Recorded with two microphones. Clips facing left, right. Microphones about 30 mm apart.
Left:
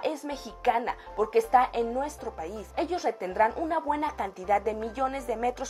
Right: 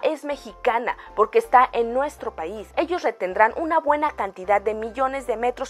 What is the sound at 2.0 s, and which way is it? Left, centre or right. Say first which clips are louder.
Speech: right 6 dB; right.